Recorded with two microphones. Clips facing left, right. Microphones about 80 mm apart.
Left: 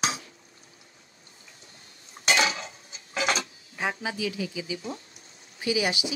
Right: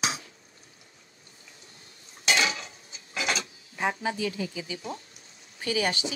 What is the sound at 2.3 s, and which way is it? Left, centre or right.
Cutlery, left.